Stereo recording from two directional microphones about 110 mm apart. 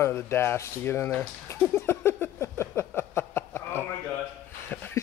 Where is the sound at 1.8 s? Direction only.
25° left (ahead or behind).